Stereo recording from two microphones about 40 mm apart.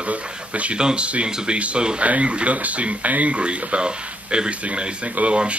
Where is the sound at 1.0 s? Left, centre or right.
Right.